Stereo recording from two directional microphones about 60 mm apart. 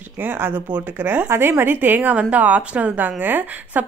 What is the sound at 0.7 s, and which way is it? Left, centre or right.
Speech, right.